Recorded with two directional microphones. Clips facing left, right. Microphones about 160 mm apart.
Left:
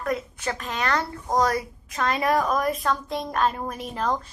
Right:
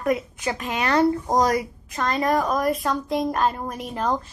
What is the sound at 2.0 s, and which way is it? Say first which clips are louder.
A woman's voice: right 1 dB; 5° left (ahead or behind).